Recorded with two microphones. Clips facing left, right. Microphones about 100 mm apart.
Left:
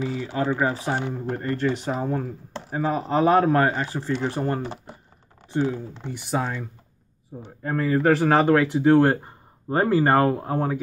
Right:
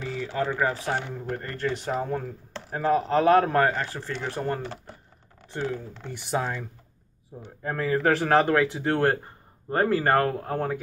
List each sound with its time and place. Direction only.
0.0 s speech: 10° left (ahead or behind)
4.2 s speech: 20° left (ahead or behind); by 6.6 s centre (ahead or behind)
7.6 s speech: centre (ahead or behind)